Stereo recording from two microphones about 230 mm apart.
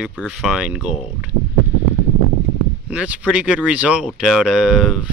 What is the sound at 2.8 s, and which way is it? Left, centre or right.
Speech, centre.